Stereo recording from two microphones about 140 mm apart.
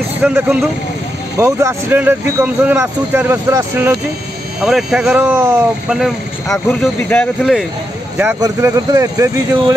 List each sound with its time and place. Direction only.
0.2 s speech: 15° right (ahead or behind)
4.6 s speech: 5° right (ahead or behind); by 5.7 s 20° right (ahead or behind)
5.9 s speech: 5° right (ahead or behind)
8.2 s speech: 20° right (ahead or behind)